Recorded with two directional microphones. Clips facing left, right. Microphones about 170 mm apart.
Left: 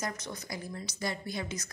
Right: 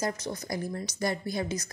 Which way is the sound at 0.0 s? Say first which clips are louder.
Right 6 dB; 30° right (ahead or behind).